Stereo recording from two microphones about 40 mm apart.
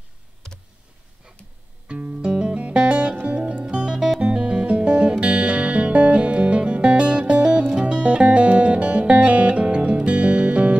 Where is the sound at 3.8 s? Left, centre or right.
Right.